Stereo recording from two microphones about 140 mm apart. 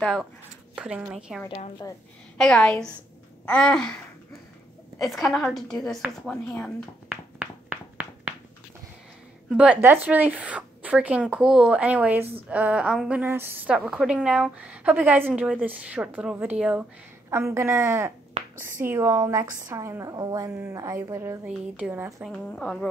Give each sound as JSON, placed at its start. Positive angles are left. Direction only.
{"t": 0.0, "sound": "a woman's voice", "side_deg": 0}
{"t": 5.0, "sound": "a woman's voice", "side_deg": 0}
{"t": 7.1, "sound": "a sound", "side_deg": -10}
{"t": 9.5, "sound": "a woman's voice", "side_deg": -10}
{"t": 17.3, "sound": "a woman's voice", "side_deg": -20}
{"t": 21.5, "sound": "a woman's voice", "side_deg": -10}
{"t": 22.2, "sound": "a woman's voice", "side_deg": 5}